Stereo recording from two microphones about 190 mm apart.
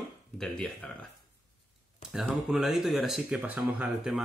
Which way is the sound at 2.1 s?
Centre (ahead or behind).